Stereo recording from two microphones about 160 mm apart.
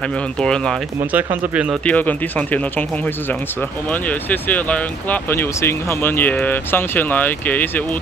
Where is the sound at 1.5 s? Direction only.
5° right (ahead or behind).